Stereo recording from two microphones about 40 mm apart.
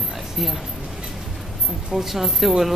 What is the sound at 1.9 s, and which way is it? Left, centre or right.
Speech, centre.